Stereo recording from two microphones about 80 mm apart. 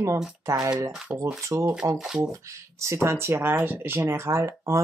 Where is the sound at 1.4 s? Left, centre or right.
Right.